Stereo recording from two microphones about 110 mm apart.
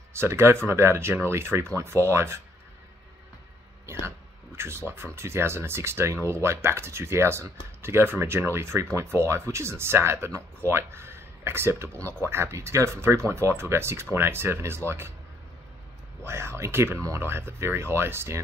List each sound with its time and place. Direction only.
0.1 s speech: 25° right (ahead or behind)
4.0 s speech: 25° right (ahead or behind)
16.3 s speech: 25° right (ahead or behind)